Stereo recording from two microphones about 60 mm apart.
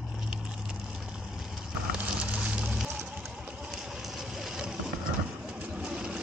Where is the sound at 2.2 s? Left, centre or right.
Centre.